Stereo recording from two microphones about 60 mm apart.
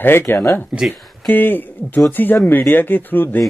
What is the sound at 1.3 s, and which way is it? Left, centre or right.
Speech, left.